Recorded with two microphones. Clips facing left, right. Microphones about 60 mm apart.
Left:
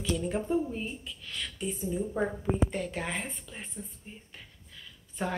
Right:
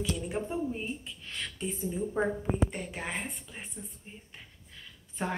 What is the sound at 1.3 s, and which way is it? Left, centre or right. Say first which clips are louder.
Speech: left 1 dB; right.